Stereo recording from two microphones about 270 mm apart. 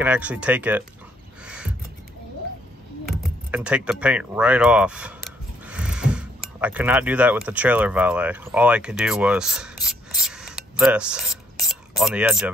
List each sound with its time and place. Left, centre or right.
0.0 s speech: centre
1.4 s a sound: centre
3.1 s speech: centre